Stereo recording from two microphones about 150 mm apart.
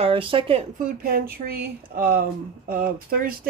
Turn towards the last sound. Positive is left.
turn(degrees=-85)